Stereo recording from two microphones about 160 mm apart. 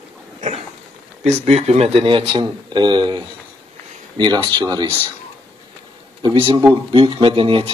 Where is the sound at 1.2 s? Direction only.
40° right (ahead or behind); by 4.9 s 25° right (ahead or behind).